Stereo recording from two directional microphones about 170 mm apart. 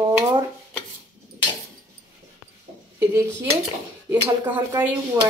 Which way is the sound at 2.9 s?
15° right (ahead or behind).